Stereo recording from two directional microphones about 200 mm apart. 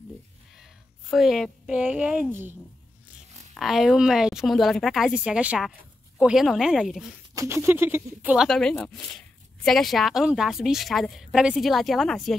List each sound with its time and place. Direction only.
1.1 s speech: centre (ahead or behind)
3.5 s a woman's voice: centre (ahead or behind)
7.3 s a woman's voice: 15° right (ahead or behind)